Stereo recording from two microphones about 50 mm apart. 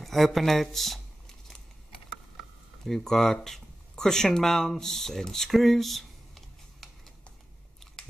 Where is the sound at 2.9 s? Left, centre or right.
Centre.